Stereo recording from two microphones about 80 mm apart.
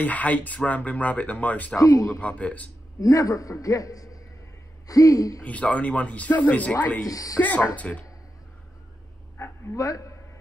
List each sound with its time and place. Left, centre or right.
0.0 s speech: centre
1.8 s a man's voice: left
2.1 s speech: centre
3.0 s a man's voice: left
5.4 s speech: centre
7.1 s a man's voice: left
7.3 s speech: left
9.4 s dog: left
9.8 s a man's voice: left